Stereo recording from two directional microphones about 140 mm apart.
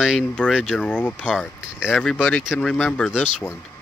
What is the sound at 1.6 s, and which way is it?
Speech, 5° right (ahead or behind).